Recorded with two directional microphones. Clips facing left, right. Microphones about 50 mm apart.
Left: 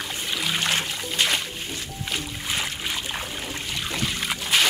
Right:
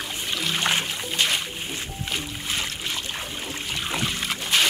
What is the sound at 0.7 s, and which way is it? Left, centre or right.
Trickle, centre.